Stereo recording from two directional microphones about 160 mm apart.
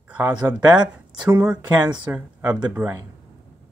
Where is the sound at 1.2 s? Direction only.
25° right (ahead or behind).